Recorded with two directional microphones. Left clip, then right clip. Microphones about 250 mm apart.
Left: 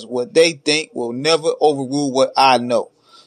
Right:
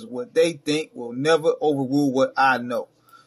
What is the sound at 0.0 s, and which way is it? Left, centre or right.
Speech, left.